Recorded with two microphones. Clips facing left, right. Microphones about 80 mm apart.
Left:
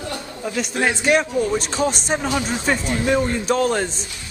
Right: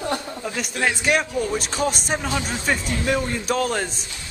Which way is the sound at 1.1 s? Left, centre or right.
Centre.